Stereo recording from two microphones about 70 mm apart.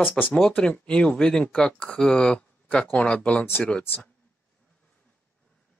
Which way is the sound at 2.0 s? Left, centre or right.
Centre.